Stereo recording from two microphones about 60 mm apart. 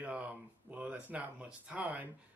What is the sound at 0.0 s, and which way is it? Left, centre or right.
Speech, right.